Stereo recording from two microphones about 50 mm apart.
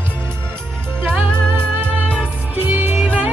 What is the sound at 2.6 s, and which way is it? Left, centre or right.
Music, right.